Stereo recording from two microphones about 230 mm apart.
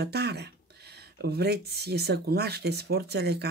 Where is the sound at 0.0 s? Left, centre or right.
Right.